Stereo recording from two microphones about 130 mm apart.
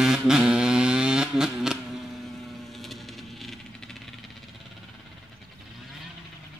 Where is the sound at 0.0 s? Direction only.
5° right (ahead or behind).